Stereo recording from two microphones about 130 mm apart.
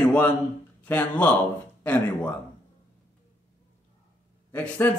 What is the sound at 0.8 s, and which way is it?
Speech, 10° left (ahead or behind).